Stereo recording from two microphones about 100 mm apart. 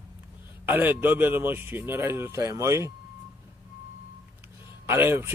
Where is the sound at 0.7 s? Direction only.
20° right (ahead or behind).